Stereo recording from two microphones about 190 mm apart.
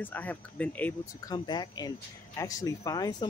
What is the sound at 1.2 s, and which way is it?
Speech, 20° left (ahead or behind).